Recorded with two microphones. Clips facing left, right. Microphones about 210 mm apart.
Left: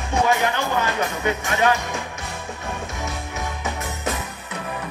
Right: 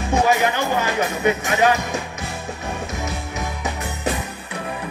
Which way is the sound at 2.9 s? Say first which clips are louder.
Right 2 dB; 20° right (ahead or behind).